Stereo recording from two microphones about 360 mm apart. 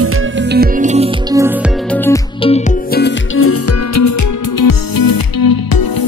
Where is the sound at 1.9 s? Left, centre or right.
Centre.